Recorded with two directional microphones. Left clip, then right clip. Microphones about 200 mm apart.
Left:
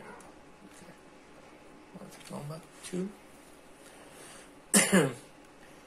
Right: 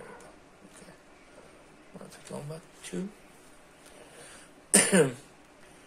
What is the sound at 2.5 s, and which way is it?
Speech, 10° right (ahead or behind).